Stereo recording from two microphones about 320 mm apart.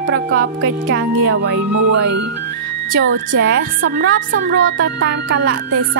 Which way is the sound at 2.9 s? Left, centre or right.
Right.